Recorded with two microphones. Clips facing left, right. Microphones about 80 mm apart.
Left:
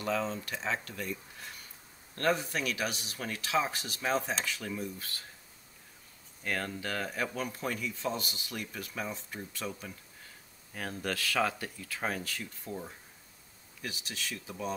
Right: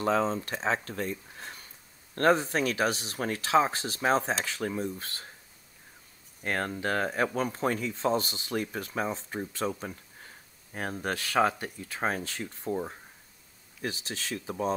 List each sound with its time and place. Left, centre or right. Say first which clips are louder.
0.0 s speech: right 6 dB; right
6.4 s speech: right 5 dB; right